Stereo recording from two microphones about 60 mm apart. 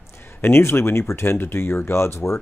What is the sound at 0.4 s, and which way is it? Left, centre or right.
Speech, left.